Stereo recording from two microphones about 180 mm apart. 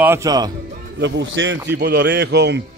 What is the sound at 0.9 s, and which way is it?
Speech, 75° right (ahead or behind).